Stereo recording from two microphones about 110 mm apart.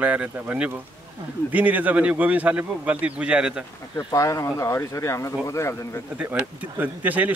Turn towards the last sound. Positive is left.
turn(degrees=-15)  # may be behind; listen again after turning